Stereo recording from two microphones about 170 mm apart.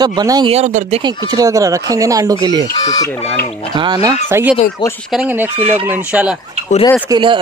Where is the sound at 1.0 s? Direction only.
25° right (ahead or behind).